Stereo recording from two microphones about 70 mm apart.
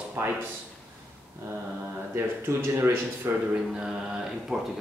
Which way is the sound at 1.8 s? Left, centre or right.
Right.